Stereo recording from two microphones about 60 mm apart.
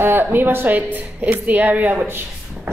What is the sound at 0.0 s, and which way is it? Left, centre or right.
A woman's voice, right.